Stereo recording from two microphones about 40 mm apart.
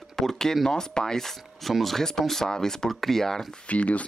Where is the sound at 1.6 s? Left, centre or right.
Centre.